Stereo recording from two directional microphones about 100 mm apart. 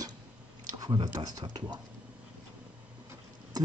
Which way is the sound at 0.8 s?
45° right (ahead or behind).